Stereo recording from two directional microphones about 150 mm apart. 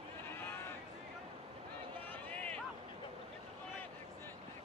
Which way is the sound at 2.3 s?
10° left (ahead or behind).